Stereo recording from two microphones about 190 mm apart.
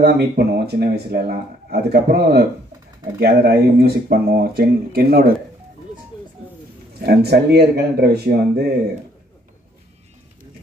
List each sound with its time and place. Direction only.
0.0 s speech: 55° right (ahead or behind)
7.0 s speech: 55° right (ahead or behind)